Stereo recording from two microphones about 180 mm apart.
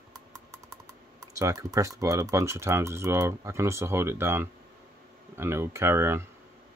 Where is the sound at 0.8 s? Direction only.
15° right (ahead or behind).